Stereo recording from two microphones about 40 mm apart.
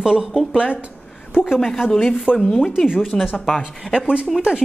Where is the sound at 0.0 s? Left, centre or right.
Centre.